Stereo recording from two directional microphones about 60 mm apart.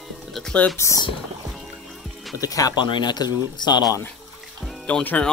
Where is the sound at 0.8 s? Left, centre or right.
Left.